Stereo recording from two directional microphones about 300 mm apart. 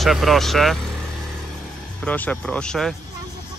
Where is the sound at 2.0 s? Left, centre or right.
Centre.